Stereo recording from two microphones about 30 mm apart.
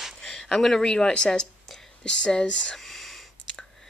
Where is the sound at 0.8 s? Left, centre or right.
Left.